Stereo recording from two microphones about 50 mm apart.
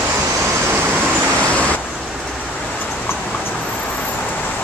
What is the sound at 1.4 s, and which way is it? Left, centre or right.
Vehicle, left.